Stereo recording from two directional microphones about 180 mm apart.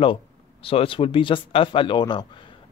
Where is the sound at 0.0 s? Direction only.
30° left (ahead or behind).